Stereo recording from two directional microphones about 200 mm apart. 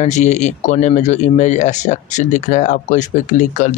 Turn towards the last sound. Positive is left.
turn(degrees=40)  # may be behind; listen again after turning